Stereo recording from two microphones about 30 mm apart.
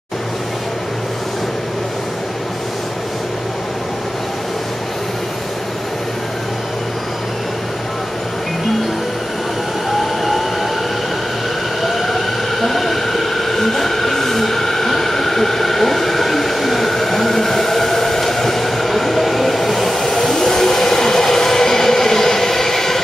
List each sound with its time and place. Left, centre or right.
11.8 s train: centre